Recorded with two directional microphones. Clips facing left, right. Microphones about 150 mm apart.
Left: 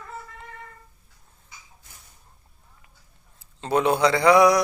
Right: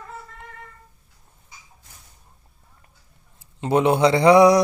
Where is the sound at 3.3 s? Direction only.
20° right (ahead or behind).